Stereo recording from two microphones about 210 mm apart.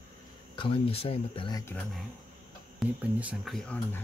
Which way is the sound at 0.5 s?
25° left (ahead or behind).